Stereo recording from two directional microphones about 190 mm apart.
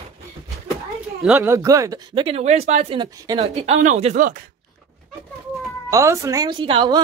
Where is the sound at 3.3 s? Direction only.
35° right (ahead or behind).